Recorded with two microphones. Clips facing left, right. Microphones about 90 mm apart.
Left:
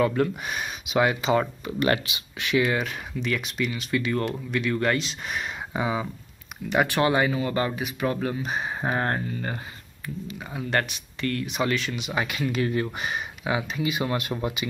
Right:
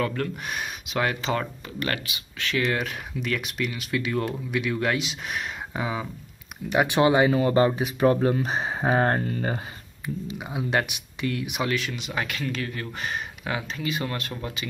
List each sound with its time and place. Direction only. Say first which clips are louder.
0.0 s speech: left 4 dB; 10° left (ahead or behind)
1.8 s speech: left 6 dB; 20° left (ahead or behind); by 6.0 s 5° left (ahead or behind)
6.9 s speech: right 7 dB; 20° right (ahead or behind)
7.3 s speech: right 6 dB; 30° right (ahead or behind); by 12.6 s 10° left (ahead or behind)
12.6 s speech: left 8 dB; 25° left (ahead or behind)
13.0 s speech: left 1 dB; 10° left (ahead or behind)